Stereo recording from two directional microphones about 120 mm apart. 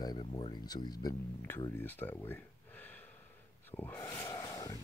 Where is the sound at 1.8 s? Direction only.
15° left (ahead or behind).